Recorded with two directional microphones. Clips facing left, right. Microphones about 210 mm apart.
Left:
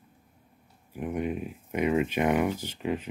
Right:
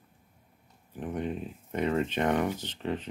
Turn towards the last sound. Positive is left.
turn(degrees=10)  # may be behind; listen again after turning